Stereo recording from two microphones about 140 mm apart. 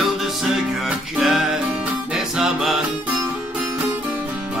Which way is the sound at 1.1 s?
Centre (ahead or behind).